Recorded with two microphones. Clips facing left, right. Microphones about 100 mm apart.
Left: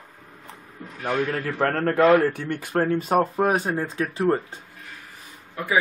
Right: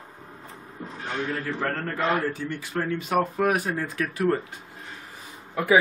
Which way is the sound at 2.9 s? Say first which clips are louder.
Left 1 dB; 35° left (ahead or behind).